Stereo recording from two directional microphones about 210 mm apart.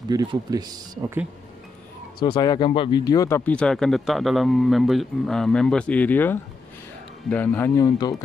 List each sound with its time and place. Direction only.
0.1 s speech: 20° right (ahead or behind)
2.1 s speech: 20° left (ahead or behind)